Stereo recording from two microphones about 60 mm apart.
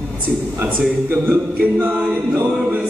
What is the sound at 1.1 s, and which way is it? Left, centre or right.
A capella, right.